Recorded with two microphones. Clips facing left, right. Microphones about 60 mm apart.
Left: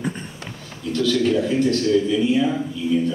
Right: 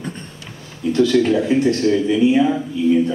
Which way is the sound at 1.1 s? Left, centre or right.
Right.